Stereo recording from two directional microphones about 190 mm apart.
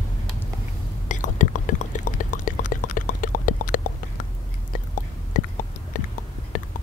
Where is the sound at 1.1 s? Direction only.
40° left (ahead or behind).